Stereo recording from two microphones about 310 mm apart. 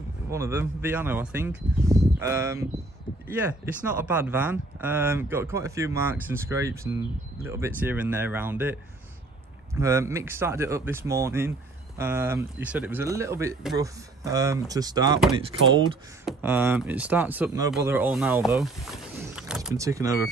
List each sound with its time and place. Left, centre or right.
0.3 s speech: centre
9.8 s speech: centre